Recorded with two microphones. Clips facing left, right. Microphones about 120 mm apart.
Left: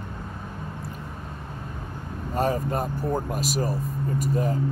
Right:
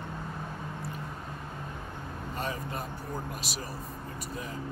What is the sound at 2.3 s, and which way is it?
Speech, 45° left (ahead or behind).